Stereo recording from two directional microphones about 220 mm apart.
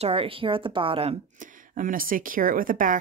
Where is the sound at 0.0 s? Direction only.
25° right (ahead or behind).